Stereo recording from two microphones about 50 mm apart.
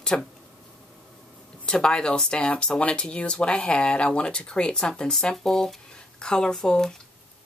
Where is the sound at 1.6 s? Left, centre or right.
Centre.